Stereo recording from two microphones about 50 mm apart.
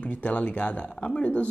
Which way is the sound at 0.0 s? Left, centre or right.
Left.